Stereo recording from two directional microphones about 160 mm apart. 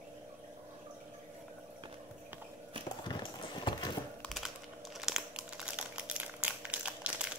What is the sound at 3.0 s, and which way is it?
Clip-clop, 30° left (ahead or behind).